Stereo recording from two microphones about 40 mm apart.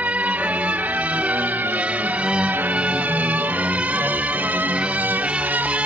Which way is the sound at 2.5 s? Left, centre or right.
Right.